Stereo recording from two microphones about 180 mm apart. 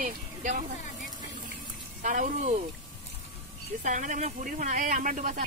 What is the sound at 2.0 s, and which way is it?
Speech, 45° right (ahead or behind).